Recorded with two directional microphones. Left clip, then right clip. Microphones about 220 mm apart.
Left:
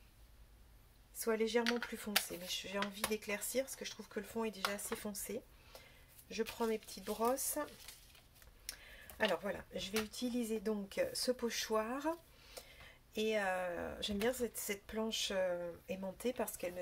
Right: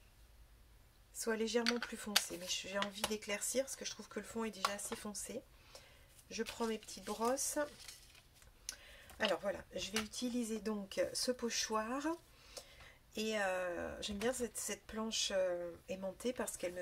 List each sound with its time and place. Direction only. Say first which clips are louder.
1.2 s speech: left 1 dB; centre (ahead or behind)
9.2 s speech: even; 5° left (ahead or behind)
13.1 s speech: left 2 dB; 5° left (ahead or behind)